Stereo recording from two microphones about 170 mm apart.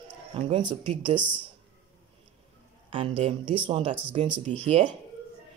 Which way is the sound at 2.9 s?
35° right (ahead or behind).